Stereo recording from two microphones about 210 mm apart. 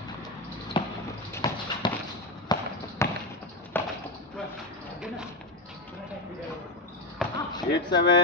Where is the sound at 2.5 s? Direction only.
20° left (ahead or behind).